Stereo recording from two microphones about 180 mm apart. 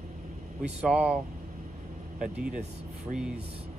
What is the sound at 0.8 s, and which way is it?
Speech, 5° right (ahead or behind).